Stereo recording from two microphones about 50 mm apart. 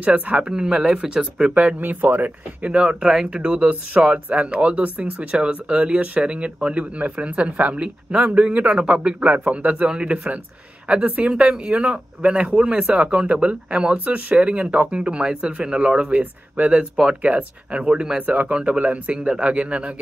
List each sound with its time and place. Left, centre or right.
0.0 s speech: right
0.5 s speech: centre
1.8 s speech: right
2.6 s speech: right
13.9 s speech: right
16.2 s speech: right
17.0 s speech: centre
17.3 s speech: right
17.7 s speech: centre